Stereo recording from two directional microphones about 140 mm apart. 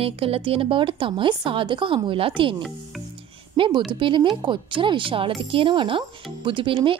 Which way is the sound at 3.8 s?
35° right (ahead or behind).